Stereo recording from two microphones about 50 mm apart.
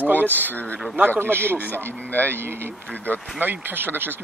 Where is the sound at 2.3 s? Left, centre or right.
Right.